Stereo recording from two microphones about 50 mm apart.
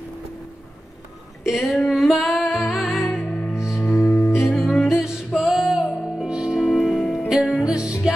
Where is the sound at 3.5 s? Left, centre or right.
Centre.